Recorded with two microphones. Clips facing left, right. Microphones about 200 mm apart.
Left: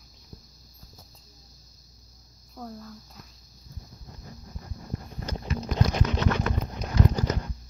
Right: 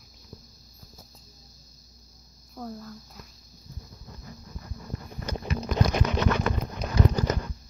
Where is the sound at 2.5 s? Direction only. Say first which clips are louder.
Right 2 dB; centre (ahead or behind).